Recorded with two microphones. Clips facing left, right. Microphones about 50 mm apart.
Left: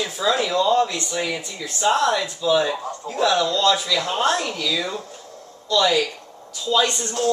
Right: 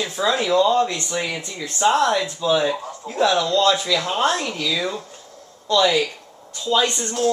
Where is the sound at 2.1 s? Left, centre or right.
Centre.